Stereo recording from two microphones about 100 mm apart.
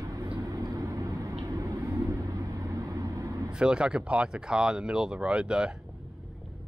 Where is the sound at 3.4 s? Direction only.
10° right (ahead or behind).